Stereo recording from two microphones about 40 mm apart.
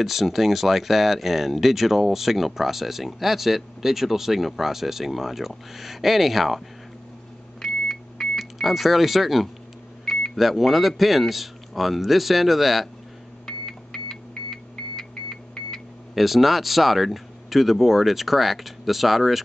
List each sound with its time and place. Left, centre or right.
0.0 s speech: centre
7.6 s beep: centre
8.4 s speech: centre
13.5 s a sound: centre
16.2 s speech: centre